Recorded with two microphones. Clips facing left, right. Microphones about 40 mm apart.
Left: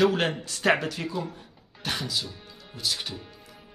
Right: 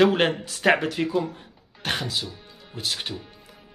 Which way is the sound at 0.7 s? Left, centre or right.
Right.